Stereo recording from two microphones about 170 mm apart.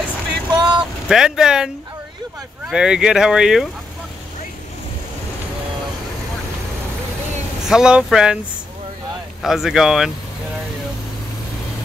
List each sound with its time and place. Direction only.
0.5 s vehicle: 25° right (ahead or behind)
1.0 s speech: 5° right (ahead or behind)
7.6 s speech: 5° right (ahead or behind)
9.4 s speech: centre (ahead or behind)